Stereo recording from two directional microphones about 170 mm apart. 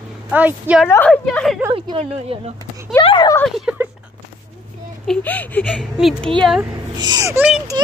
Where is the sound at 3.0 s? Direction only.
30° left (ahead or behind).